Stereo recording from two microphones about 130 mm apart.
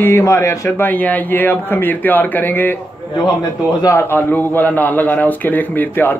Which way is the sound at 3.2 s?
30° left (ahead or behind).